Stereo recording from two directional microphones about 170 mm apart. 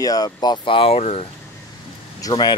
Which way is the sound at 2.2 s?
25° left (ahead or behind).